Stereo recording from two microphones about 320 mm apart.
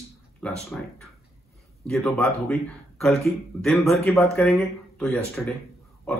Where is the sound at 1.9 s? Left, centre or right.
Centre.